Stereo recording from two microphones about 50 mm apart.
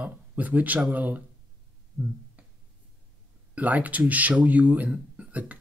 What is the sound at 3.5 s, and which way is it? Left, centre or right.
Speech, right.